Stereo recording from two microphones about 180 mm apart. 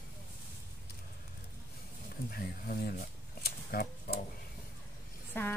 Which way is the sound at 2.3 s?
55° left (ahead or behind).